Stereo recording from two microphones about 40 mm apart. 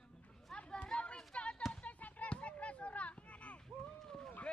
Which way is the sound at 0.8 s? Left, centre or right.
Left.